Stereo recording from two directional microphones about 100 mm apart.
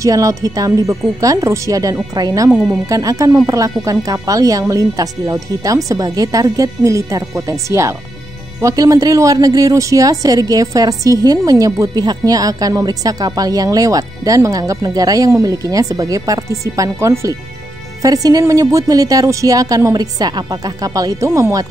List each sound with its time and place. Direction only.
0.0 s speech: 35° right (ahead or behind)